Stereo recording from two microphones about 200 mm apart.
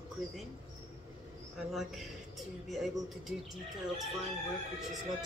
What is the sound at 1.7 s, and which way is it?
A man's voice, centre (ahead or behind).